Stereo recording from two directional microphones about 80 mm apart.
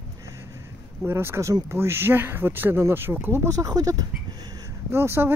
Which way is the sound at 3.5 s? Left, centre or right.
Right.